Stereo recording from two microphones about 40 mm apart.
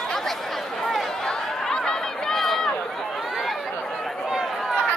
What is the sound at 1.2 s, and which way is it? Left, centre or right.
Chatter, centre.